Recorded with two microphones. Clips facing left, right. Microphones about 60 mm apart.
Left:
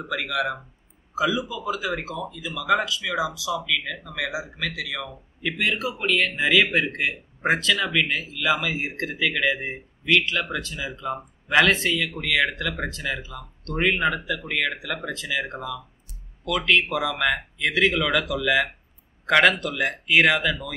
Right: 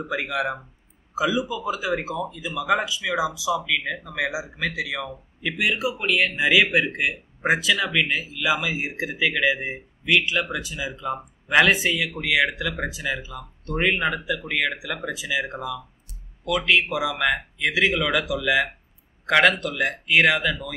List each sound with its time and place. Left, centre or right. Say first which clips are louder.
0.1 s speech: even; centre
5.4 s speech: right 1 dB; centre